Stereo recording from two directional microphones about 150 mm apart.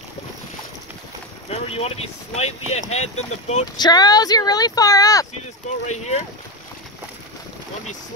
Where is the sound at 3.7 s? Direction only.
25° left (ahead or behind).